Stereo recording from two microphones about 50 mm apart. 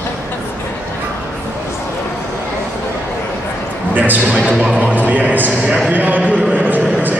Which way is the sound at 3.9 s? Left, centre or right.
Right.